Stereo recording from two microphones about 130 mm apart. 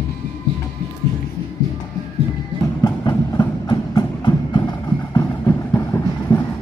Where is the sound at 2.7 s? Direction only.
30° left (ahead or behind).